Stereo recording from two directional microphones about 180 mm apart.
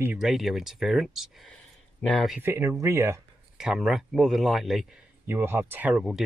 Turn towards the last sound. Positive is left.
turn(degrees=-5)  # may be behind; listen again after turning